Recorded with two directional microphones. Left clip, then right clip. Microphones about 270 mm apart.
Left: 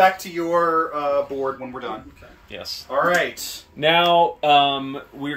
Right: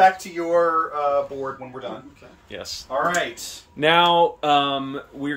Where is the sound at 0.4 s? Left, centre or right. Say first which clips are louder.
Left 1 dB; left.